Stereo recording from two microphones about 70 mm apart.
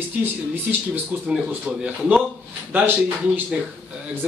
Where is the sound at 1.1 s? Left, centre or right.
Centre.